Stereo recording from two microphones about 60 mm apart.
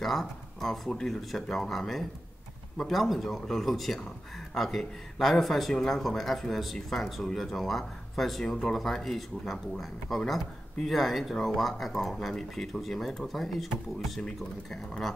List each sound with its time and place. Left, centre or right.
0.0 s speech: centre